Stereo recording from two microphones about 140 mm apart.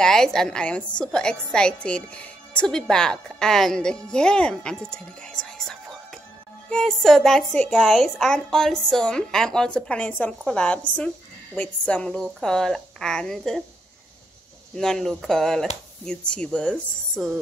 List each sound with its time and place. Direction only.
0.0 s a woman's voice: 5° left (ahead or behind)
14.8 s a woman's voice: 5° left (ahead or behind)